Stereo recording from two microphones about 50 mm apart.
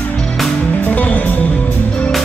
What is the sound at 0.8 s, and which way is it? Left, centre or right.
Music, left.